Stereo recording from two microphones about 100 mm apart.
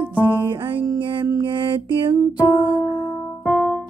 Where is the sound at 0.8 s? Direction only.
35° right (ahead or behind).